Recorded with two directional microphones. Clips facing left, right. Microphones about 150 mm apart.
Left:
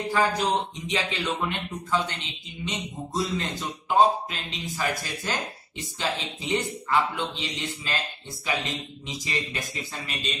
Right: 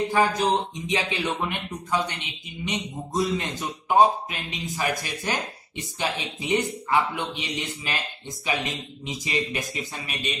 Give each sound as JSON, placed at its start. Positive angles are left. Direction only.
{"t": 0.1, "sound": "speech", "side_deg": -15}